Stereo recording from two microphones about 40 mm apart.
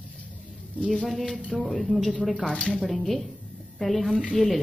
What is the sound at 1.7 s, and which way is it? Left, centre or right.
Speech, centre.